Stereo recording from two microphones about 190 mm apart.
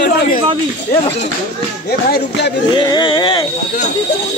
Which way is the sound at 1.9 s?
55° left (ahead or behind).